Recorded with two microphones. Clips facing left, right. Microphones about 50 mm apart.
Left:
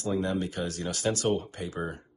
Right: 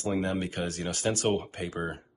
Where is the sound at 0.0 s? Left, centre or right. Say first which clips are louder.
Even; right.